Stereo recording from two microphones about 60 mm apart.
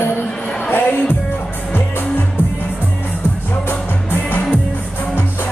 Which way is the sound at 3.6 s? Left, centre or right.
Left.